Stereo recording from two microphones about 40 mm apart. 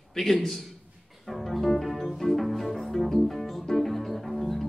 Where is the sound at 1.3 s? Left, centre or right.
Centre.